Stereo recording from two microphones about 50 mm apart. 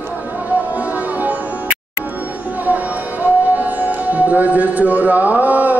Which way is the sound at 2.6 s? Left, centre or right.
Right.